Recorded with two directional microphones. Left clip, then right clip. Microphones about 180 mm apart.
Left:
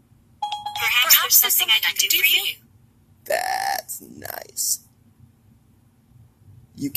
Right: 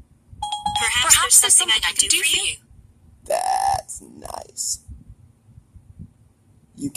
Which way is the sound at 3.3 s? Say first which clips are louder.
Right 3 dB; 10° left (ahead or behind).